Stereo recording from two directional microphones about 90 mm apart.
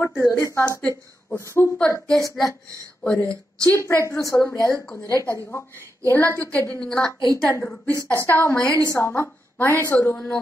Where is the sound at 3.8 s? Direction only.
25° left (ahead or behind).